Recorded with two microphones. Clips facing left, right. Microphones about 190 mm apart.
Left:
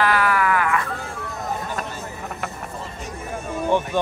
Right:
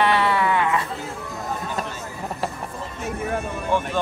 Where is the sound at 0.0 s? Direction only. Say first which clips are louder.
Even; 25° right (ahead or behind).